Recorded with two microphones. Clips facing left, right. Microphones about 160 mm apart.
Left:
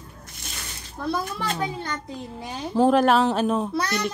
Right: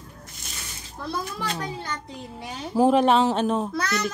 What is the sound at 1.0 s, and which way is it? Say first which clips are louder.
Speech: left 6 dB; 50° left (ahead or behind).